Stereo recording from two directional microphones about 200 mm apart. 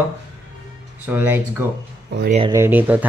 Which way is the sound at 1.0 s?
10° right (ahead or behind).